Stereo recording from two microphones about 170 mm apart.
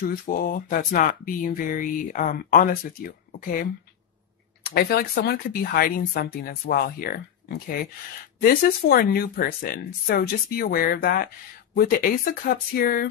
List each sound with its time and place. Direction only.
0.0 s speech: 60° left (ahead or behind)
4.7 s speech: 70° left (ahead or behind)